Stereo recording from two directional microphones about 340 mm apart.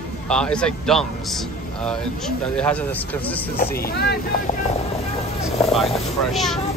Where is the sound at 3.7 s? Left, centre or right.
Left.